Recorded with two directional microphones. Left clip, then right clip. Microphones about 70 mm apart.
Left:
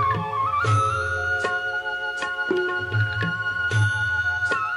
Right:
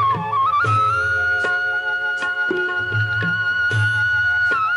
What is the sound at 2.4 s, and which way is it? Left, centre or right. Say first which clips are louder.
Music: right 4 dB; right.